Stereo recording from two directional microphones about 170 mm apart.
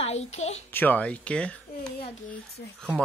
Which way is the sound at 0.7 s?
10° left (ahead or behind).